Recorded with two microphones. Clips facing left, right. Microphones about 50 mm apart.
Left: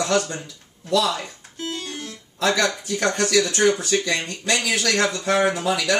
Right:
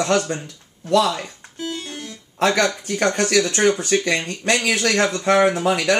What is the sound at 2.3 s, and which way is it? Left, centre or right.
Speech, right.